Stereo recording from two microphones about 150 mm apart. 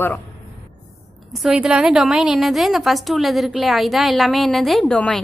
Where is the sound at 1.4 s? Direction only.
5° right (ahead or behind).